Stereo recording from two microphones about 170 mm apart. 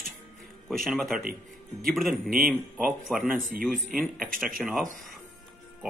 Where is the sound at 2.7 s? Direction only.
10° right (ahead or behind).